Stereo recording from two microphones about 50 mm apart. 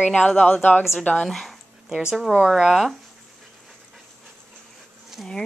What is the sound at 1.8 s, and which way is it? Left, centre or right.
Speech, centre.